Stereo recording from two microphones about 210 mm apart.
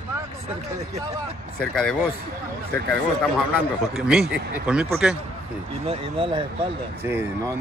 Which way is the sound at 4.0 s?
5° right (ahead or behind).